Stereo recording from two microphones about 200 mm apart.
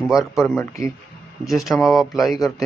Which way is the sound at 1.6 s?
Centre (ahead or behind).